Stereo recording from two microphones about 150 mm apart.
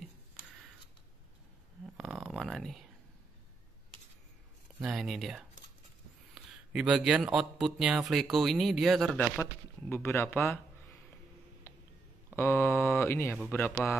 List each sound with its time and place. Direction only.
2.0 s a sound: 5° right (ahead or behind)
4.8 s speech: centre (ahead or behind)
9.1 s speech: 15° left (ahead or behind)
12.4 s speech: 15° left (ahead or behind)